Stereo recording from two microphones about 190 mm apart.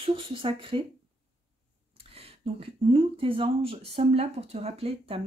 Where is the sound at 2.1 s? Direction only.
30° right (ahead or behind).